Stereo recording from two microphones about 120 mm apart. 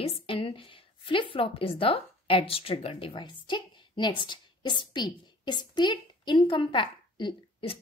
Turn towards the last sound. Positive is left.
turn(degrees=45)  # may be behind; listen again after turning